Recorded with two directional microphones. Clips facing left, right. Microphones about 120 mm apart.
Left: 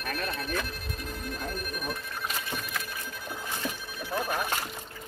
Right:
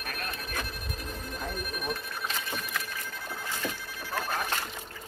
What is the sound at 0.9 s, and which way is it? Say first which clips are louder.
Music: left 2 dB; centre (ahead or behind).